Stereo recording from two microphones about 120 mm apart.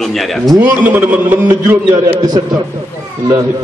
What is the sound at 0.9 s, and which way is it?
Speech, 15° right (ahead or behind).